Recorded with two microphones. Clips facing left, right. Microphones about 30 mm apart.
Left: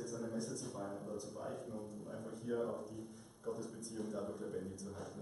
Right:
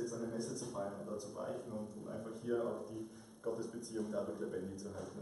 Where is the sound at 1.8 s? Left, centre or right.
Centre.